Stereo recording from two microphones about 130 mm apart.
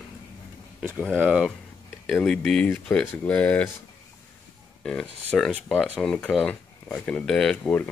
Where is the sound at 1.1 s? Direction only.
5° right (ahead or behind); by 3.7 s 10° left (ahead or behind).